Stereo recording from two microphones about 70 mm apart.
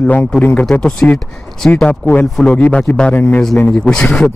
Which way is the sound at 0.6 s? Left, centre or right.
Centre.